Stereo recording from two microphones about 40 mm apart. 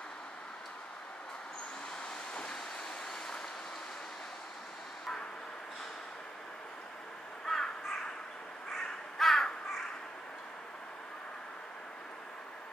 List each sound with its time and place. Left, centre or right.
2.3 s vehicle: left
7.4 s crow: centre
9.2 s crow: centre